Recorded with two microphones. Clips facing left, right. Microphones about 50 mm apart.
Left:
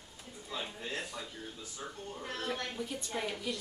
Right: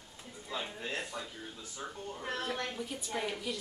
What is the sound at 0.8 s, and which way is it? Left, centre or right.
Speech, right.